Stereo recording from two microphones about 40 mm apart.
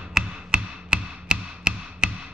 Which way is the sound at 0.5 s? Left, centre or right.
Right.